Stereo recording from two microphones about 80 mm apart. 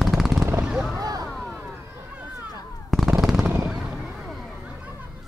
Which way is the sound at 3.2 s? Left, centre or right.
Centre.